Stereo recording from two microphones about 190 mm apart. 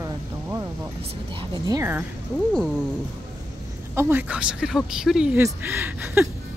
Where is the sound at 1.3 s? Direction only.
20° right (ahead or behind).